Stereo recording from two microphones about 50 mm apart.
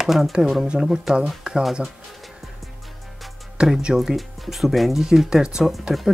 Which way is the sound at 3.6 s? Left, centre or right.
Centre.